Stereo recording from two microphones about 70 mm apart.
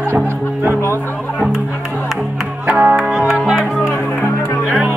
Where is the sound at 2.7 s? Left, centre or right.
Centre.